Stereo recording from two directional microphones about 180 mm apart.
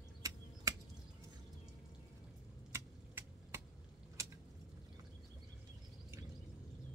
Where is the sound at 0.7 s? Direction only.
20° right (ahead or behind).